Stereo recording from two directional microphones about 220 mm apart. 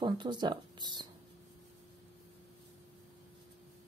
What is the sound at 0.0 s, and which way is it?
Speech, 20° right (ahead or behind).